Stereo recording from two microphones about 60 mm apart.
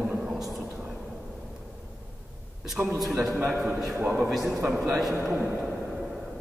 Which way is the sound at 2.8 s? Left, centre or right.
Centre.